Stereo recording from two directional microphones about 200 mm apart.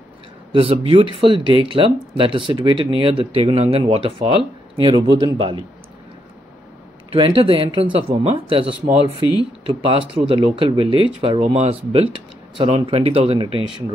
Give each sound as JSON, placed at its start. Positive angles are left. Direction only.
{"t": 0.5, "sound": "speech", "side_deg": -25}
{"t": 7.2, "sound": "speech", "side_deg": -25}